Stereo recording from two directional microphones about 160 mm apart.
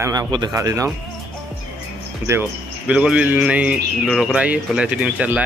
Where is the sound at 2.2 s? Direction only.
15° right (ahead or behind).